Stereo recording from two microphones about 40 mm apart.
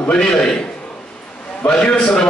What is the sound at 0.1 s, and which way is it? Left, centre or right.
Speech, centre.